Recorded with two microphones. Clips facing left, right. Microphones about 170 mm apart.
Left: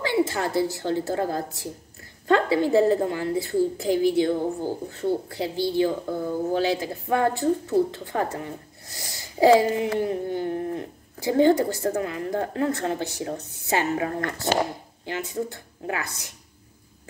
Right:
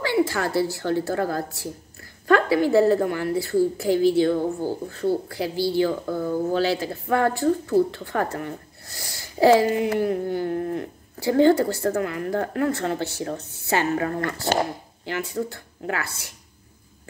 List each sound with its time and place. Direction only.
0.0 s a woman's voice: 20° left (ahead or behind)